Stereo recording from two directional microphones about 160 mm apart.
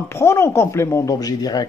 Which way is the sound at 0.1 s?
15° left (ahead or behind).